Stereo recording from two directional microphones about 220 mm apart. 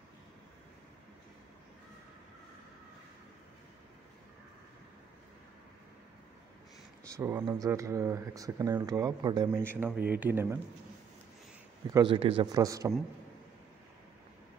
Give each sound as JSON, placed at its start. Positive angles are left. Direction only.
{"t": 7.2, "sound": "speech", "side_deg": -10}
{"t": 11.9, "sound": "speech", "side_deg": -20}